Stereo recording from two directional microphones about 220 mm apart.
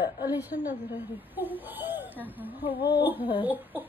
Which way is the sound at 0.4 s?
10° right (ahead or behind).